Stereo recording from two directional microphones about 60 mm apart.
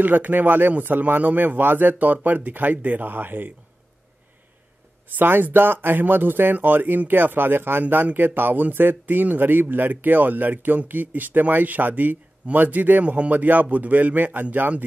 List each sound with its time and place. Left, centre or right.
0.0 s speech: right
3.1 s speech: right
5.1 s speech: right